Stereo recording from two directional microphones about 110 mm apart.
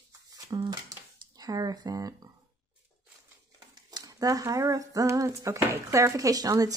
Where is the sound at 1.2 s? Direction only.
35° right (ahead or behind).